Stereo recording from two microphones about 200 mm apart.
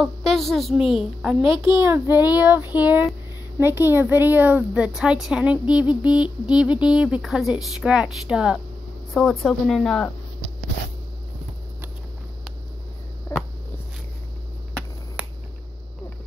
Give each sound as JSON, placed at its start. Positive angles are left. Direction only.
{"t": 0.0, "sound": "speech", "side_deg": 0}
{"t": 1.6, "sound": "a child's voice", "side_deg": -15}